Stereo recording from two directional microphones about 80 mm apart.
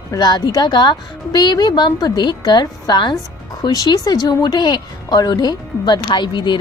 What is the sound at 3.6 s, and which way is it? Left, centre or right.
Speech, left.